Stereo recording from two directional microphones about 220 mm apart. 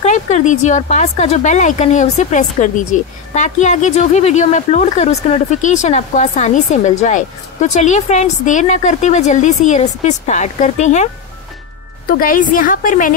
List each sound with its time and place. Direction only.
0.0 s speech: 30° left (ahead or behind)
12.1 s speech: 40° left (ahead or behind)